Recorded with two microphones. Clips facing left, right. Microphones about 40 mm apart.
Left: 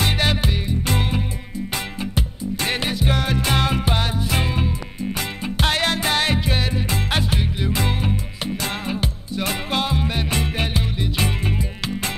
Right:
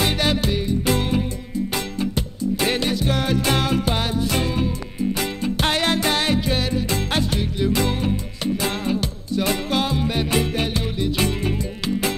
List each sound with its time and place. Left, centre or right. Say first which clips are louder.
0.2 s music: right 1 dB; centre
2.7 s music: right 1 dB; centre